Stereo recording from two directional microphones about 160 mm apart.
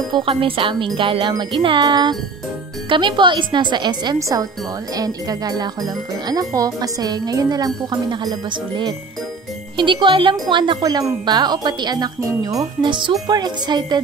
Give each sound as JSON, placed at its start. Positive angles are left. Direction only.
{"t": 0.1, "sound": "speech", "side_deg": -35}